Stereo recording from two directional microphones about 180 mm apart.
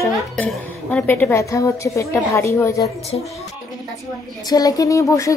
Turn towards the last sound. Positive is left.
turn(degrees=15)  # may be behind; listen again after turning